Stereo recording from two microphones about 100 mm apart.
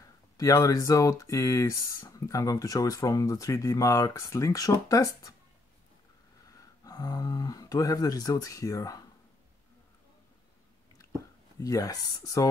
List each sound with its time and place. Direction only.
0.4 s speech: 35° left (ahead or behind)
6.8 s speech: 40° left (ahead or behind)
11.6 s speech: 35° left (ahead or behind)